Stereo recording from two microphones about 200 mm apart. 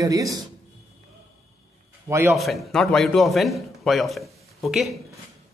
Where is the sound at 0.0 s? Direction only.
15° right (ahead or behind).